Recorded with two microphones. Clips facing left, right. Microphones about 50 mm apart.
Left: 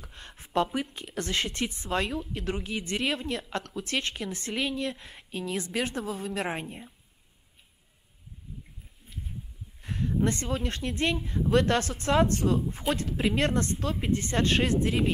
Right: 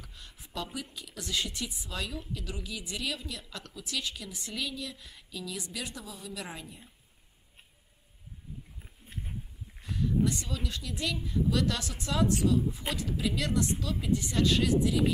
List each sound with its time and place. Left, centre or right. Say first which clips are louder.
0.1 s a sound: left 13 dB; left
0.7 s a woman's voice: left 8 dB; left
9.8 s a woman's voice: left 1 dB; left